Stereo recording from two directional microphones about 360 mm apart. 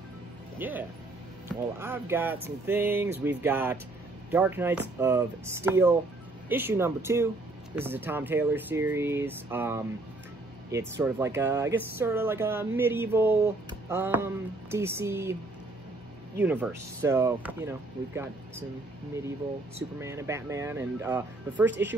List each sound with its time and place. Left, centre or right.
0.6 s speech: centre
16.3 s speech: centre
20.0 s speech: centre
21.6 s speech: right